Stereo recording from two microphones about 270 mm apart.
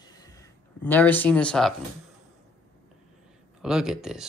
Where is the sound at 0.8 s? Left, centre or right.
Centre.